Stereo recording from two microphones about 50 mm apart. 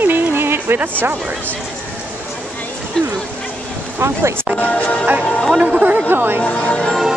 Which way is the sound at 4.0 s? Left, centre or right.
Right.